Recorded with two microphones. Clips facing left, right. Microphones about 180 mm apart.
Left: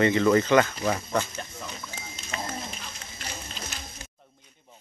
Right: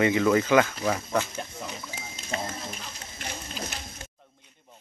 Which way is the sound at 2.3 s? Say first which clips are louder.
Right 3 dB; 35° right (ahead or behind).